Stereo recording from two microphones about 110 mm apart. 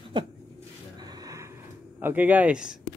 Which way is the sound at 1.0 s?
35° right (ahead or behind).